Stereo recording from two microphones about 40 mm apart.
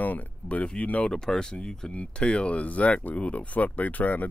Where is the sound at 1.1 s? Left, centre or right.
Centre.